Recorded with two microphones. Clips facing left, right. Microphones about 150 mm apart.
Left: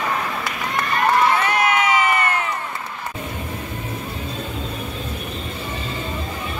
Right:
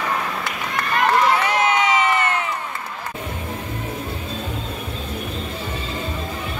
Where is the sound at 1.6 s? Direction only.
25° right (ahead or behind).